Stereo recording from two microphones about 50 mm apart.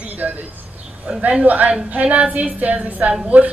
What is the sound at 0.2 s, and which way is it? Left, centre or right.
A woman's voice, right.